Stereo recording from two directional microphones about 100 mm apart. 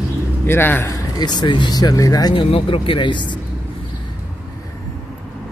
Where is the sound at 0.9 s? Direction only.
45° left (ahead or behind).